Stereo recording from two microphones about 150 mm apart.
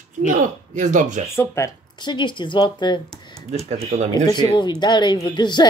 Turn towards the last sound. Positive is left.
turn(degrees=30)  # may be behind; listen again after turning